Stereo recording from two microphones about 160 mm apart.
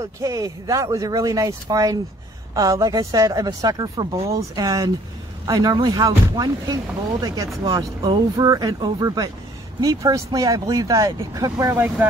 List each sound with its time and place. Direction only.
0.0 s speech: 20° right (ahead or behind)
11.7 s speech: 10° right (ahead or behind)